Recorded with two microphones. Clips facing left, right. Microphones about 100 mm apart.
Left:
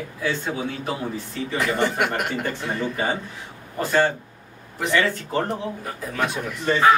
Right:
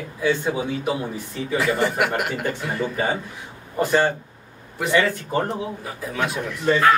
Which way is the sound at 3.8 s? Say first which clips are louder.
Right 1 dB; 15° right (ahead or behind).